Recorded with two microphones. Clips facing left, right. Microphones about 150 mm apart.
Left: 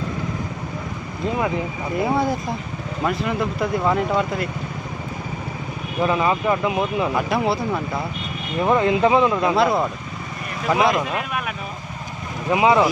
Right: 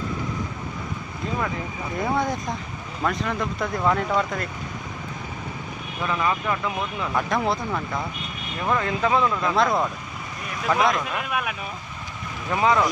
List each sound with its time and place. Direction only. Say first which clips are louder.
2.0 s speech: left 4 dB; 5° left (ahead or behind)
6.0 s speech: left 5 dB; 25° left (ahead or behind)
7.2 s speech: left 3 dB; 5° left (ahead or behind)
8.6 s speech: left 6 dB; 25° left (ahead or behind)
9.6 s speech: left 3 dB; 5° left (ahead or behind)
12.4 s speech: left 4 dB; 15° left (ahead or behind)